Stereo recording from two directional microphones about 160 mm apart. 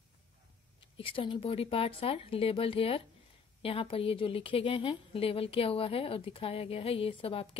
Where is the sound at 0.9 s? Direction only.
35° left (ahead or behind).